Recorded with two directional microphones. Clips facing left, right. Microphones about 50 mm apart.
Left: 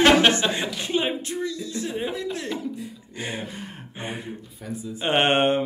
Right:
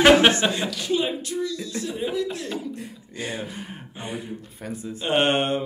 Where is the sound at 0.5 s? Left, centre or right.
Left.